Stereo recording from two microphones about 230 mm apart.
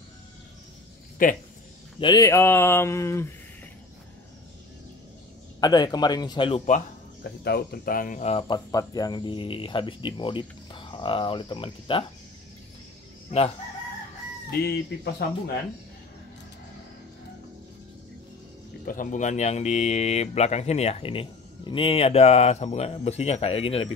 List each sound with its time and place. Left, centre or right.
1.2 s chicken: left
2.0 s speech: centre
5.6 s speech: centre
7.4 s speech: left
13.3 s chicken: left
14.5 s speech: left
18.9 s speech: left